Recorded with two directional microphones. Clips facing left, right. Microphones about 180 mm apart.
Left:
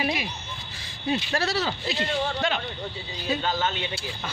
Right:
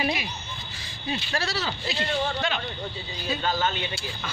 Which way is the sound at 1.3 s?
55° left (ahead or behind).